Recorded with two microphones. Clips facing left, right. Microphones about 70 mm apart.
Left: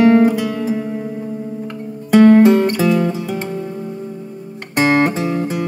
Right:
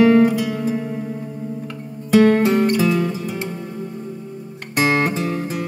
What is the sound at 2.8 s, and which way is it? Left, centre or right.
Music, left.